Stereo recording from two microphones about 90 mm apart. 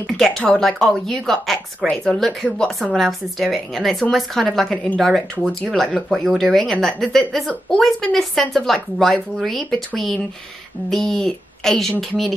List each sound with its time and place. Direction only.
0.0 s speech: 5° left (ahead or behind)